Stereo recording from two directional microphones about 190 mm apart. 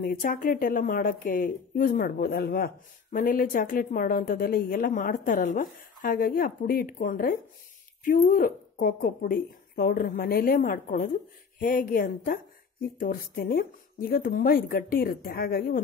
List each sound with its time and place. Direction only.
0.0 s speech: 50° left (ahead or behind)